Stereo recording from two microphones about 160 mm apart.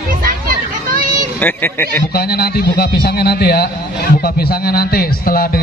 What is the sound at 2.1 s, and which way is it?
A man's voice, 75° left (ahead or behind).